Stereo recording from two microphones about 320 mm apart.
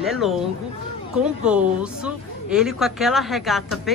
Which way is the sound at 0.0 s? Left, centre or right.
Centre.